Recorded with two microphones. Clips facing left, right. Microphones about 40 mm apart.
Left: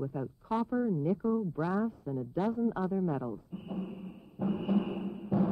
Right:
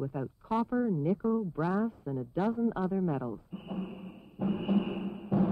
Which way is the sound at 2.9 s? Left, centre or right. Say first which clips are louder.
Right 1 dB; centre.